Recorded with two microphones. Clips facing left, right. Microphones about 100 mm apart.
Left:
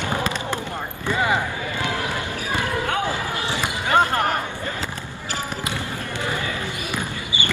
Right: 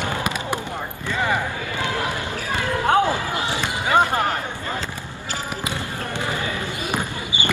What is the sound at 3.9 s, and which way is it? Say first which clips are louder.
Basketball bounce: even; 15° right (ahead or behind).